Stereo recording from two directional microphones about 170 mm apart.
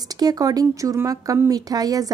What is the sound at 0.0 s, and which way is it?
Speech, 25° right (ahead or behind).